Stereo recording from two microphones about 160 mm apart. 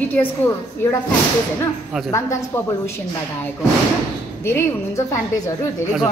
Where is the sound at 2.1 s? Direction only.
20° left (ahead or behind).